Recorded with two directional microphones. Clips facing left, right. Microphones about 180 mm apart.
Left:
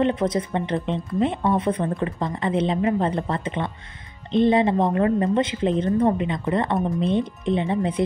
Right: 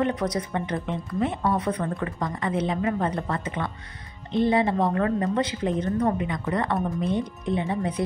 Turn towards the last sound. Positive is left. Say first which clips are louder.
# left 4 dB
turn(degrees=20)  # may be behind; listen again after turning